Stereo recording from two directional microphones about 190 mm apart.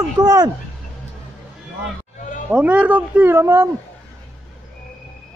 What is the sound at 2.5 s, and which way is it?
Speech, 5° right (ahead or behind).